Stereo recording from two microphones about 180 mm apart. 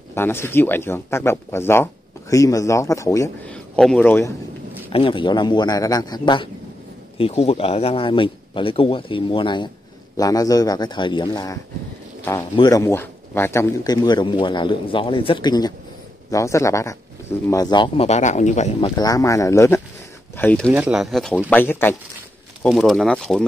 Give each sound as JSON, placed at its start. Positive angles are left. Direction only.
{"t": 0.1, "sound": "speech", "side_deg": 15}
{"t": 3.4, "sound": "a man's voice", "side_deg": 5}
{"t": 4.9, "sound": "a man's voice", "side_deg": 30}
{"t": 18.8, "sound": "a man's voice", "side_deg": 25}
{"t": 20.7, "sound": "speech", "side_deg": -5}